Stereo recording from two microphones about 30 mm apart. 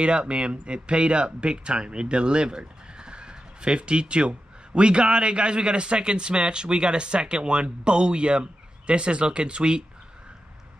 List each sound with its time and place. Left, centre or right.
0.0 s speech: right